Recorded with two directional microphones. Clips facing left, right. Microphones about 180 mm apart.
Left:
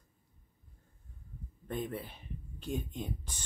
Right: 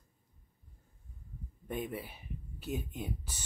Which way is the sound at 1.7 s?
10° right (ahead or behind).